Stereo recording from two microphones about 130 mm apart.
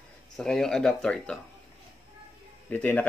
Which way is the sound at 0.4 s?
5° left (ahead or behind).